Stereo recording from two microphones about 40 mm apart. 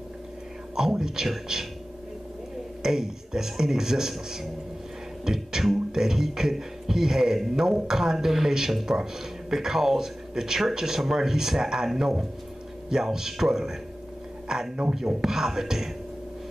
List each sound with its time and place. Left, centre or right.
0.7 s speech: centre
2.8 s speech: centre